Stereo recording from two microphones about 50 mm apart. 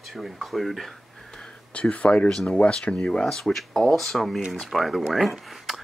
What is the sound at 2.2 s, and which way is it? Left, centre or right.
Speech, centre.